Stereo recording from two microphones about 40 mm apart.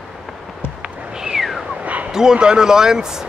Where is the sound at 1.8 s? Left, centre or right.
Right.